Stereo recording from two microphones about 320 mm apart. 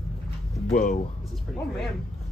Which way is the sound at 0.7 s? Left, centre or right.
Left.